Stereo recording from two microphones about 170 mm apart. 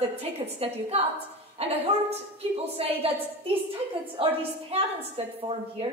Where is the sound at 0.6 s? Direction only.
35° right (ahead or behind).